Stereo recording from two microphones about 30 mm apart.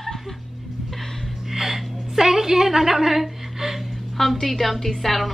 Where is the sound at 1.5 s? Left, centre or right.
Centre.